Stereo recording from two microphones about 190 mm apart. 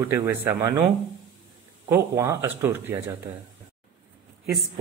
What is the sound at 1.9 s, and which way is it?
Speech, 15° right (ahead or behind).